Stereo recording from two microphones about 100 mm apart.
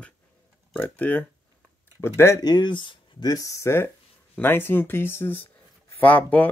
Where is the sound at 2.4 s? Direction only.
45° left (ahead or behind).